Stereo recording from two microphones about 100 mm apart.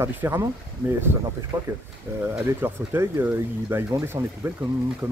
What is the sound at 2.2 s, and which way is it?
Speech, 20° right (ahead or behind).